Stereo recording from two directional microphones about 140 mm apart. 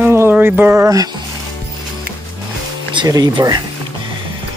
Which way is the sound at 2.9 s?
25° right (ahead or behind).